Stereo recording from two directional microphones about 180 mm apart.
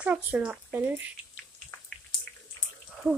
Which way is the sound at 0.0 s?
5° right (ahead or behind).